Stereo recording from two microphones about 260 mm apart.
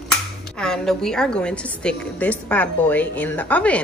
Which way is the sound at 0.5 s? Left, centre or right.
Centre.